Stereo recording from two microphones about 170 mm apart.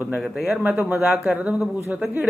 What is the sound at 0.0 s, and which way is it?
Speech, 5° right (ahead or behind).